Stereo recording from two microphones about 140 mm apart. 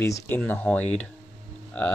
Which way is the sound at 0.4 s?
10° left (ahead or behind).